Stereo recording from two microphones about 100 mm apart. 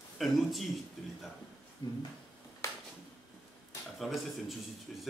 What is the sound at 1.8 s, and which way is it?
Speech, 50° left (ahead or behind).